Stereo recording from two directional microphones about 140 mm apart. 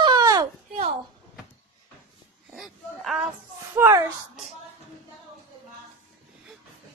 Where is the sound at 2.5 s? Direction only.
5° right (ahead or behind).